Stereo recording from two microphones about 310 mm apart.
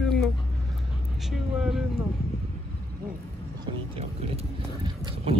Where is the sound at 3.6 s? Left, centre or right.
Centre.